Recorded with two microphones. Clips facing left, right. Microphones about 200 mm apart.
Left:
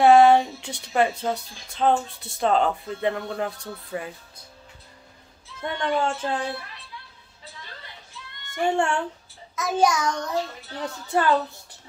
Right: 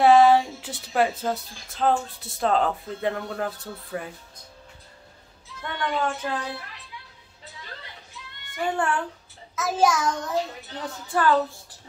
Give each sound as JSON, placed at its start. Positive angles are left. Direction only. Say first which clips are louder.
{"t": 0.0, "sound": "a woman's voice", "louder": "left 1 dB", "side_deg": 0}
{"t": 5.6, "sound": "speech", "louder": "left 2 dB", "side_deg": 30}
{"t": 8.6, "sound": "speech", "louder": "left 3 dB", "side_deg": 25}
{"t": 9.6, "sound": "a woman's voice", "louder": "even", "side_deg": 0}
{"t": 11.1, "sound": "speech", "louder": "even", "side_deg": 20}